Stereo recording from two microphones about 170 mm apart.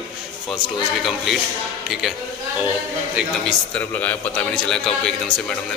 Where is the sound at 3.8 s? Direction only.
10° left (ahead or behind).